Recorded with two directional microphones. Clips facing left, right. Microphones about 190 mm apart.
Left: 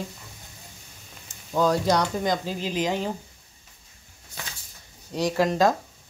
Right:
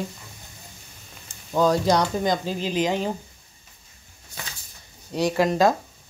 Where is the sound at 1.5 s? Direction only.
20° right (ahead or behind).